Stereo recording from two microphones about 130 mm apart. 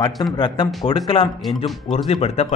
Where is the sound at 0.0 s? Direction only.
35° left (ahead or behind).